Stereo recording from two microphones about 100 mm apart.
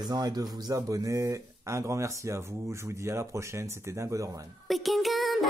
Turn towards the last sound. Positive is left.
turn(degrees=0)  # may be behind; listen again after turning